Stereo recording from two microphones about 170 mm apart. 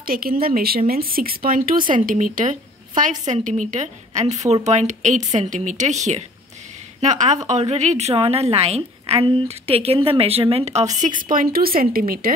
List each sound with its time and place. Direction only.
0.0 s speech: 60° right (ahead or behind)
1.8 s speech: 30° right (ahead or behind)
2.0 s a woman's voice: 50° right (ahead or behind)
11.2 s speech: 60° right (ahead or behind)